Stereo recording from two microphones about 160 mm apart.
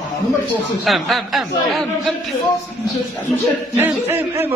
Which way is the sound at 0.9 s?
Centre (ahead or behind).